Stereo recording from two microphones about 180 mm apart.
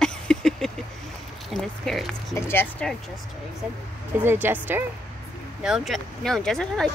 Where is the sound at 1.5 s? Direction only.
Centre (ahead or behind).